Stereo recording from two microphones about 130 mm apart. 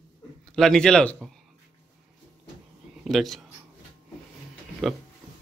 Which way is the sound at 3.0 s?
Centre (ahead or behind).